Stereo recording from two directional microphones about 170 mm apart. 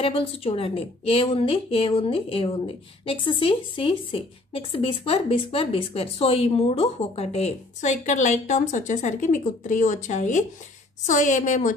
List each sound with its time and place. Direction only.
0.0 s a woman's voice: 35° left (ahead or behind)